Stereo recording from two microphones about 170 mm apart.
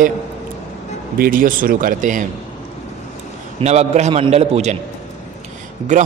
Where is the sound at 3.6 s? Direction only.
40° right (ahead or behind).